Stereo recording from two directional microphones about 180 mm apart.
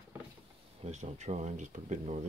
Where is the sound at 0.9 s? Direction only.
40° right (ahead or behind).